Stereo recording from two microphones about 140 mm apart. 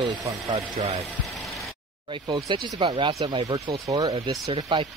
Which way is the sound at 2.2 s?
35° right (ahead or behind).